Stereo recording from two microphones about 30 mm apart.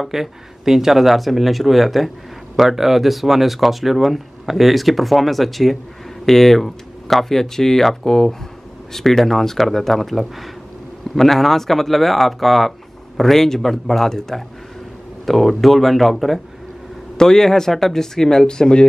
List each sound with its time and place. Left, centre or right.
0.0 s speech: centre
15.2 s speech: centre
17.2 s speech: centre